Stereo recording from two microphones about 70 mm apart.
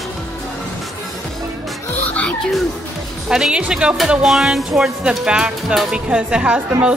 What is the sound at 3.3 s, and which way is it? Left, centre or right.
Speech, centre.